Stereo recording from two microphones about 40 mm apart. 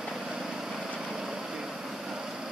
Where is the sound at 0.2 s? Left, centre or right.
Centre.